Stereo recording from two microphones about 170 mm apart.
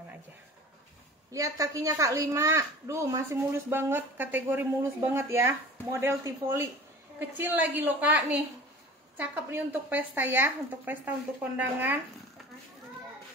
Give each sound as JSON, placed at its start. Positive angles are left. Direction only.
{"t": 1.3, "sound": "a woman's voice", "side_deg": -20}